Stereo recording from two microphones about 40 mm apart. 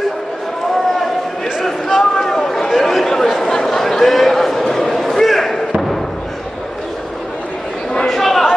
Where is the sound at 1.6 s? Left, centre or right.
Centre.